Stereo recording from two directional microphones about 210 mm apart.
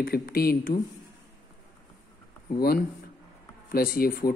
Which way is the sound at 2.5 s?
45° left (ahead or behind).